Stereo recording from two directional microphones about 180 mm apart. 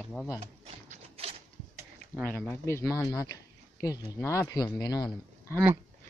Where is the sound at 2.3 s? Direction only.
5° left (ahead or behind).